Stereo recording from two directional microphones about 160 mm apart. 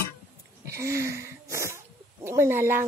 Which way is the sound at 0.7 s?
20° right (ahead or behind).